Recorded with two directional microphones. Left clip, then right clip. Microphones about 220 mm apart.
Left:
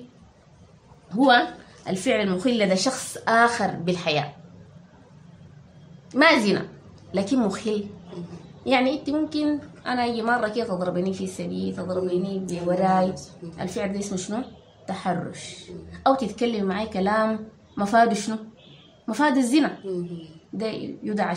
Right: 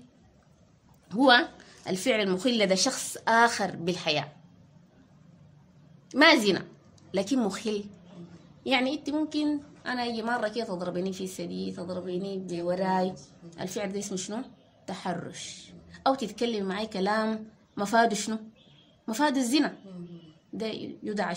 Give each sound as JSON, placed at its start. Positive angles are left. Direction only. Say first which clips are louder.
{"t": 1.1, "sound": "a man's voice", "louder": "left 3 dB", "side_deg": -45}
{"t": 6.1, "sound": "a woman's voice", "louder": "left 2 dB", "side_deg": -35}